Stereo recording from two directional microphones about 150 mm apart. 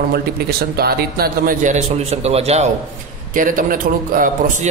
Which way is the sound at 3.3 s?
65° right (ahead or behind).